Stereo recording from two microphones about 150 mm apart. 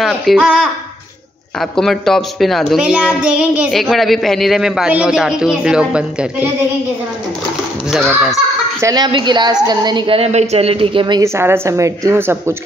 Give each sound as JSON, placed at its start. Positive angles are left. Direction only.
{"t": 0.0, "sound": "a child's voice", "side_deg": 0}
{"t": 8.8, "sound": "a woman's voice", "side_deg": -30}
{"t": 11.2, "sound": "a woman's voice", "side_deg": -15}